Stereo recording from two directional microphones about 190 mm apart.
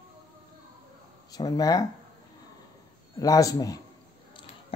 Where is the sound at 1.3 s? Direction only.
20° left (ahead or behind).